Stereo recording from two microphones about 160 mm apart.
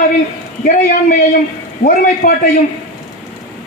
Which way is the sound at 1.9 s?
60° left (ahead or behind).